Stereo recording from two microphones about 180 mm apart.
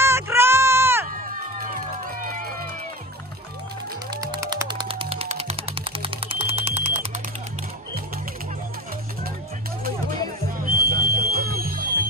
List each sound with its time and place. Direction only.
0.0 s a sound: 15° right (ahead or behind)
4.3 s music: 20° right (ahead or behind); by 7.0 s 35° right (ahead or behind)
10.6 s music: 55° right (ahead or behind)